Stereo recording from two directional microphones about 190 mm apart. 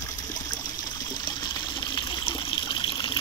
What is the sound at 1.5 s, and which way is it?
Water, 20° left (ahead or behind).